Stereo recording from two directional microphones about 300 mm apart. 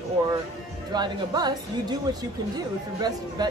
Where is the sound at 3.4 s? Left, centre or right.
Centre.